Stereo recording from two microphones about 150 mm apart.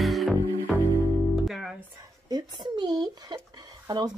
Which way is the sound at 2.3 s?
30° right (ahead or behind).